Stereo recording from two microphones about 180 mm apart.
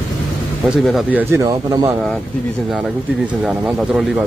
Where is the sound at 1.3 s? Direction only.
20° right (ahead or behind).